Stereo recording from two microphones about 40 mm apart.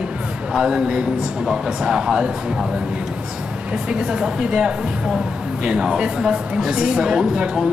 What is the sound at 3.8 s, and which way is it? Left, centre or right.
A man's voice, right.